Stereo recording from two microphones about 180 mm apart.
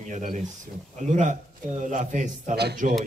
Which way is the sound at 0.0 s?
45° right (ahead or behind).